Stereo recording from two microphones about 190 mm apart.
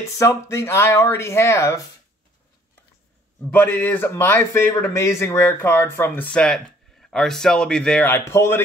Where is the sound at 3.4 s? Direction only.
10° left (ahead or behind).